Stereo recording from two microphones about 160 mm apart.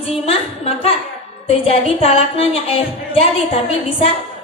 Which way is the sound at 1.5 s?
40° left (ahead or behind).